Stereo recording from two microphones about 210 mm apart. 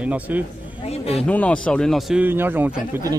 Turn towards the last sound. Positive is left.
turn(degrees=-10)  # may be behind; listen again after turning